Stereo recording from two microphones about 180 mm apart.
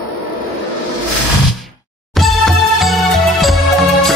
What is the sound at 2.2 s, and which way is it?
Music, centre (ahead or behind).